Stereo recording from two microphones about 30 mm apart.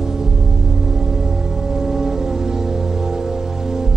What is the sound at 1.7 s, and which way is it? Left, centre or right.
Music, centre.